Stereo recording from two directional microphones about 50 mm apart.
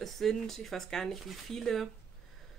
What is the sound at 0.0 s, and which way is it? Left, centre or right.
A woman's voice, centre.